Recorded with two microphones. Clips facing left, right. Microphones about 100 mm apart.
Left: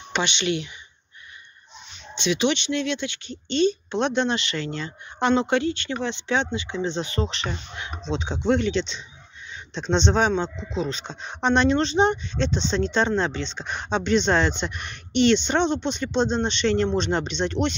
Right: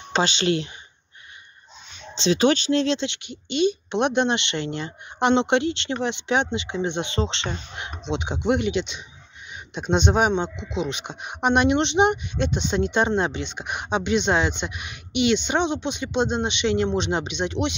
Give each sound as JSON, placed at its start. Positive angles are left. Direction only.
{"t": 0.1, "sound": "speech", "side_deg": -35}
{"t": 2.1, "sound": "speech", "side_deg": -35}
{"t": 8.1, "sound": "speech", "side_deg": -15}